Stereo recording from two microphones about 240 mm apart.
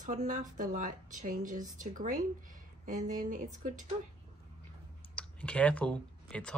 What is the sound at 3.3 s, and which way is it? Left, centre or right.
Speech, right.